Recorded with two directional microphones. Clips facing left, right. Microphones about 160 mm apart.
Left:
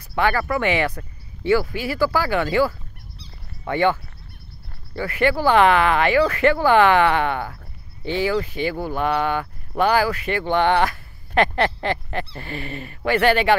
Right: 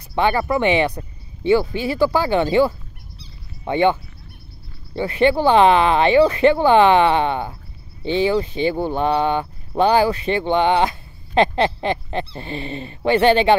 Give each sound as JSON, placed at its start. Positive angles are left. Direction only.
{"t": 0.1, "sound": "speech", "side_deg": -20}